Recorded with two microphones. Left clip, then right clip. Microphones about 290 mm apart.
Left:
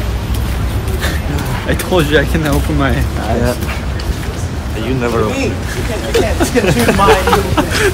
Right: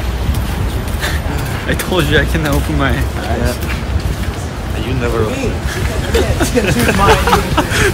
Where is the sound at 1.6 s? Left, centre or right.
Centre.